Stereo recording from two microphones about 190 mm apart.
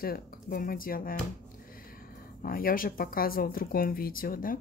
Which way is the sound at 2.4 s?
50° left (ahead or behind).